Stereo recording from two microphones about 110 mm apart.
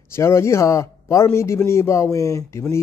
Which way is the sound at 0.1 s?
25° left (ahead or behind).